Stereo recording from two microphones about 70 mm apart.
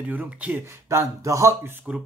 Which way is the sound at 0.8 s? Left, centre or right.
Right.